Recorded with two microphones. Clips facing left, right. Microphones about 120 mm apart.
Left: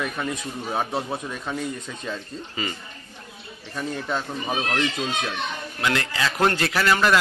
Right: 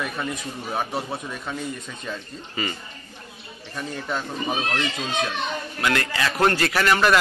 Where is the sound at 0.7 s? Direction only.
Centre (ahead or behind).